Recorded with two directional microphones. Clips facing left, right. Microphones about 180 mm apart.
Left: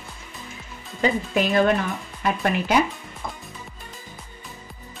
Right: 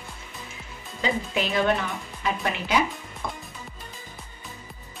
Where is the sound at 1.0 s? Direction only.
50° left (ahead or behind).